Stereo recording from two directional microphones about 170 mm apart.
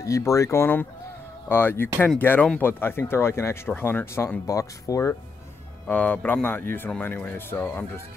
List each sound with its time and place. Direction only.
0.0 s speech: 20° left (ahead or behind)